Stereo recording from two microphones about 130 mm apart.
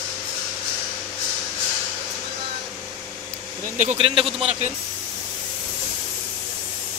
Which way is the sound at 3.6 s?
70° right (ahead or behind).